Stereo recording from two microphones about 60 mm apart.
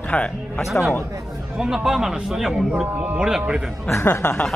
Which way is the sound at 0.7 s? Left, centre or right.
Centre.